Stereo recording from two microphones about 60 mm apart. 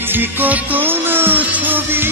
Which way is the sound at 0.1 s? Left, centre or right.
Right.